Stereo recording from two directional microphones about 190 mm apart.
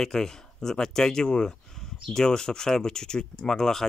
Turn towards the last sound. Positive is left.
turn(degrees=5)  # may be behind; listen again after turning